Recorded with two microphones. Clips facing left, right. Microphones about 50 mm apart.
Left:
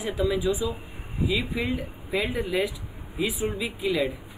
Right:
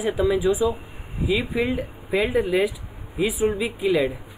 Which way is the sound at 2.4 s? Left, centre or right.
Right.